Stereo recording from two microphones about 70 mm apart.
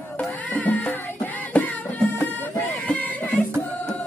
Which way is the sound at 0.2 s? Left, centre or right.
Left.